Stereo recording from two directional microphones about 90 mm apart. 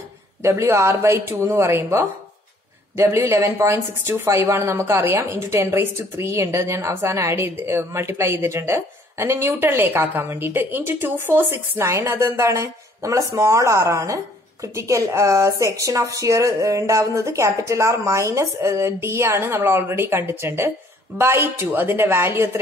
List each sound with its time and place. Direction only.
0.4 s a woman's voice: 30° right (ahead or behind)